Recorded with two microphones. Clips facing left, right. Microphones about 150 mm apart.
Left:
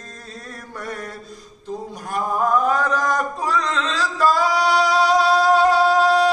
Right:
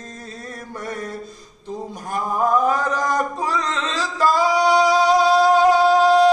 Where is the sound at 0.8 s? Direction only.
15° right (ahead or behind).